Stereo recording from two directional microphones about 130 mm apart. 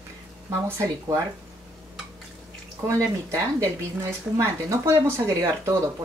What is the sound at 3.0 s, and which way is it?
Speech, 20° right (ahead or behind).